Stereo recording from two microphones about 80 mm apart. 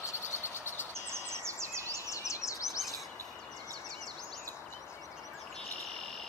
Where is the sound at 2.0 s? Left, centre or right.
Left.